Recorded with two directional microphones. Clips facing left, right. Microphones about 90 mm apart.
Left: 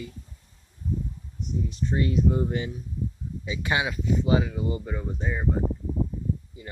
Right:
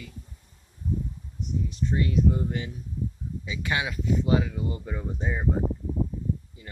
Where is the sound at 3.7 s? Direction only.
15° left (ahead or behind).